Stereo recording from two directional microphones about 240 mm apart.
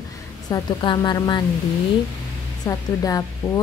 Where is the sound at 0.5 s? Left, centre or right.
Centre.